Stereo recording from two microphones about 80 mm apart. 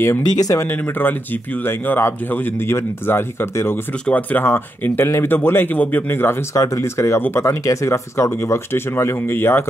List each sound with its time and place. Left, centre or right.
0.2 s speech: left
0.6 s speech: left
4.0 s speech: centre
4.5 s speech: left
6.5 s speech: left
7.4 s speech: left